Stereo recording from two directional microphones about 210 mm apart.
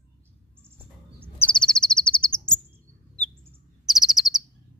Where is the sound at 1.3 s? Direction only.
5° left (ahead or behind).